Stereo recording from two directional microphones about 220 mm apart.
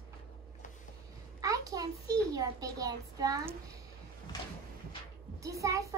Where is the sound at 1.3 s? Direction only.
15° right (ahead or behind).